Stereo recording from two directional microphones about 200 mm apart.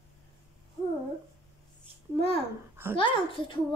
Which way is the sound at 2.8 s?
10° right (ahead or behind).